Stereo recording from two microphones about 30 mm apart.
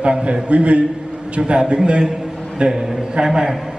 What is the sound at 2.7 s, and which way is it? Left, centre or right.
Speech, centre.